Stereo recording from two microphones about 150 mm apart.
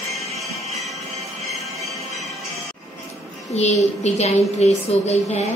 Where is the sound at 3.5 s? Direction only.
45° left (ahead or behind).